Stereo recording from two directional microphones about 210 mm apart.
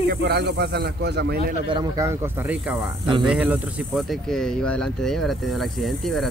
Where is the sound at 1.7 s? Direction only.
15° right (ahead or behind); by 6.3 s centre (ahead or behind).